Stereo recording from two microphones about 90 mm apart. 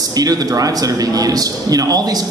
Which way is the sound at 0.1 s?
45° right (ahead or behind).